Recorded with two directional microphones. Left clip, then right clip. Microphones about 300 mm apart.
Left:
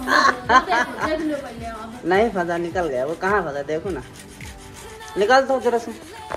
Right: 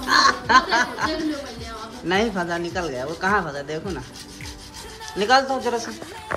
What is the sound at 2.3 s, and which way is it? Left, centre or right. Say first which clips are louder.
Speech: left 3 dB; left.